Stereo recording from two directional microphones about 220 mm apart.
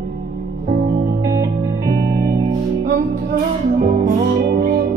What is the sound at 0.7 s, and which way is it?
Music, 40° right (ahead or behind).